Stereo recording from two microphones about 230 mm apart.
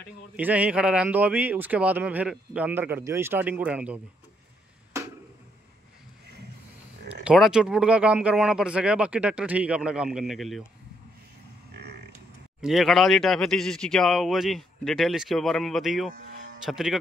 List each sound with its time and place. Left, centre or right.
0.4 s speech: centre
7.2 s speech: centre
11.7 s a sound: right
12.6 s speech: centre